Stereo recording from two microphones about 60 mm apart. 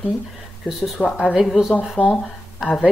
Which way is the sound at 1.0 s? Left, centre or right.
Left.